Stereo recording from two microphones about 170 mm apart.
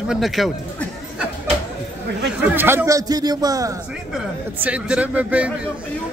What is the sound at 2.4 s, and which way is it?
Speech, 10° right (ahead or behind).